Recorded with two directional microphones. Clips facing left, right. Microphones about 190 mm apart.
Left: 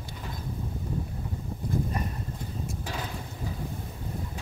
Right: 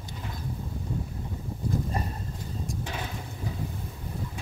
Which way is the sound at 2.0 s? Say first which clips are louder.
Even; 30° right (ahead or behind).